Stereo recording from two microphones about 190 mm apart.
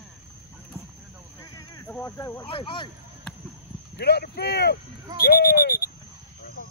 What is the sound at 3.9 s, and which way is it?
Speech, 60° left (ahead or behind).